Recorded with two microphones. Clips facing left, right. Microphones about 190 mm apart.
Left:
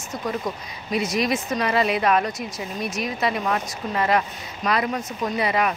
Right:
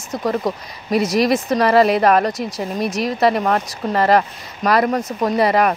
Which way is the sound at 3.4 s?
55° right (ahead or behind).